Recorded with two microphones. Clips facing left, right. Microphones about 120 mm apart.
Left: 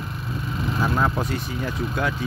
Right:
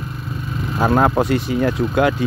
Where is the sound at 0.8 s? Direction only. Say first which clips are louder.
Right 9 dB; 70° right (ahead or behind).